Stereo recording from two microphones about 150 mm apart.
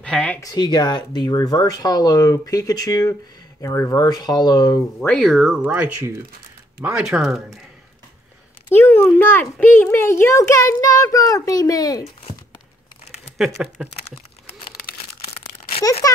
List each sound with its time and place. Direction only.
0.0 s speech: 10° left (ahead or behind)
0.4 s a child's voice: 25° left (ahead or behind)
5.0 s speech: 5° left (ahead or behind)
8.6 s a child's voice: 15° left (ahead or behind)
15.8 s speech: 20° left (ahead or behind)